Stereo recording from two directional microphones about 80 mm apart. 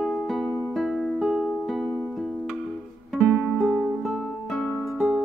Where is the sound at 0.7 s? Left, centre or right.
Centre.